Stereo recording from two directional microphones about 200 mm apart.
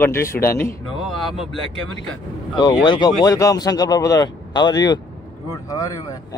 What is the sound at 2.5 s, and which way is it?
Speech, 20° left (ahead or behind).